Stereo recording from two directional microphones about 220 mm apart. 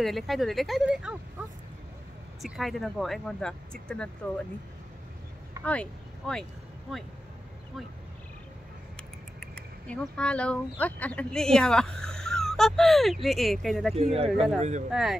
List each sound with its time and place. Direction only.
0.0 s speech: centre (ahead or behind)
2.4 s speech: centre (ahead or behind)
5.6 s speech: 5° left (ahead or behind)
9.4 s speech: 5° left (ahead or behind)
13.9 s speech: 30° right (ahead or behind)
14.9 s speech: centre (ahead or behind)